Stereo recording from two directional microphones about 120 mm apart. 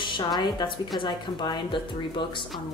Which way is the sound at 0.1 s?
35° left (ahead or behind).